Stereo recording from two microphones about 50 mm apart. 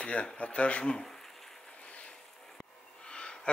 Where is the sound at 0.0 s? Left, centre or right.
Left.